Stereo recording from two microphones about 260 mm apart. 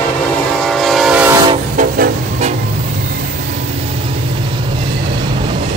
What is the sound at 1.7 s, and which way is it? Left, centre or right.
Vehicle, right.